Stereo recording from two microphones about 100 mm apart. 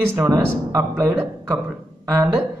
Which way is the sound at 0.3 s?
35° right (ahead or behind).